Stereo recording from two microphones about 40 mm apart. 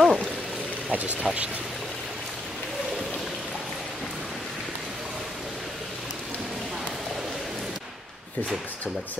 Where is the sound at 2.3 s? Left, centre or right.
Centre.